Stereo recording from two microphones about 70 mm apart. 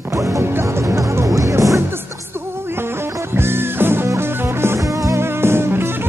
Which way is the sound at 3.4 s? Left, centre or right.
Right.